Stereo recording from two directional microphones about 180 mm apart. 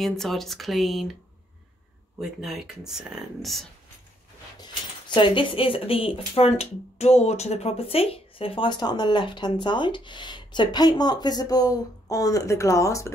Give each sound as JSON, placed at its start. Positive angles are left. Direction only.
{"t": 0.0, "sound": "speech", "side_deg": 0}
{"t": 2.1, "sound": "speech", "side_deg": 0}
{"t": 4.6, "sound": "speech", "side_deg": 25}